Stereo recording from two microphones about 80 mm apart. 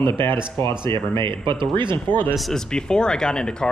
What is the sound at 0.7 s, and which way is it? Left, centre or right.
A man's voice, right.